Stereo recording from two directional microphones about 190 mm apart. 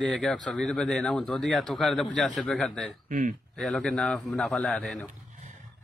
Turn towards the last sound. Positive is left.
turn(degrees=5)  # may be behind; listen again after turning